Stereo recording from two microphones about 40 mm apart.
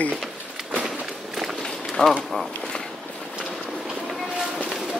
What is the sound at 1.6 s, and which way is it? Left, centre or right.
Run, centre.